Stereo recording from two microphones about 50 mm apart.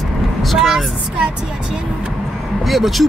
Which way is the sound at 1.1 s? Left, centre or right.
Centre.